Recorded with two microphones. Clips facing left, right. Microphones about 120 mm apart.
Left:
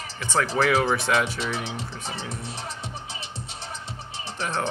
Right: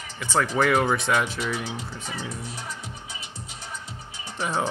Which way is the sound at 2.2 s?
70° left (ahead or behind).